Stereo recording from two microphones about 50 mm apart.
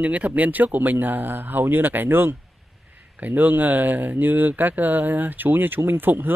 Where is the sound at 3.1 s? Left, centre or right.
Right.